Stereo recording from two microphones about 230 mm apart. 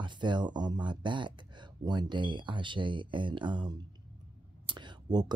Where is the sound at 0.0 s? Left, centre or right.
Centre.